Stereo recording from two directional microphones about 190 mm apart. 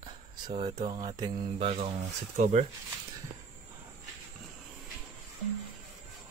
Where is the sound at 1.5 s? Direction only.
35° right (ahead or behind).